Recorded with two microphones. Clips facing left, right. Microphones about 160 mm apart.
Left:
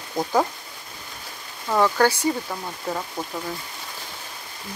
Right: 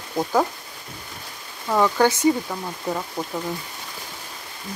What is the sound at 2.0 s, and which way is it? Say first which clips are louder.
Speech: right 2 dB; 20° right (ahead or behind).